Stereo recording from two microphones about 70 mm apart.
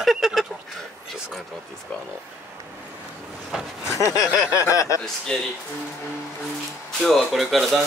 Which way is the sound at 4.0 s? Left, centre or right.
Left.